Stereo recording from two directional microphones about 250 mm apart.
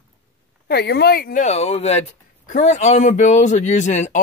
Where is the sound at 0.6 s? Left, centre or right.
Left.